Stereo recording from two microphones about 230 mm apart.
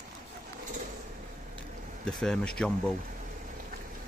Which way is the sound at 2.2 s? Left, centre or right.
Centre.